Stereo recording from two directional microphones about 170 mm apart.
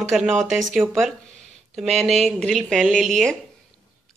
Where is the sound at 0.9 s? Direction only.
Centre (ahead or behind).